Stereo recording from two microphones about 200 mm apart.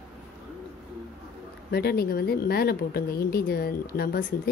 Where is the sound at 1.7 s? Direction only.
50° left (ahead or behind).